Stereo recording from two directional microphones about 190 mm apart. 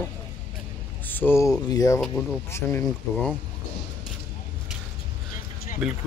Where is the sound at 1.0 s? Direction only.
10° left (ahead or behind).